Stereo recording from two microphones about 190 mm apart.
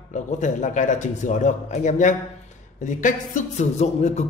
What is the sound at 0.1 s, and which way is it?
A man's voice, 40° left (ahead or behind).